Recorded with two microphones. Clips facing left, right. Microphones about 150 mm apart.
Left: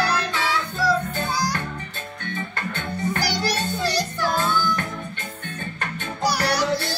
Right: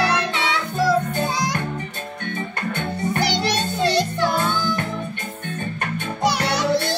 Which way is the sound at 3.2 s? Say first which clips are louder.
Right 3 dB; 25° right (ahead or behind).